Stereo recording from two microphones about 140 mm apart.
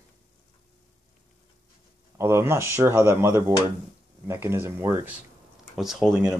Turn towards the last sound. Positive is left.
turn(degrees=0)  # may be behind; listen again after turning